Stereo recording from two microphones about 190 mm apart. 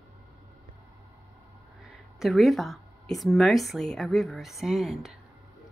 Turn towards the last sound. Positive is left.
turn(degrees=0)  # may be behind; listen again after turning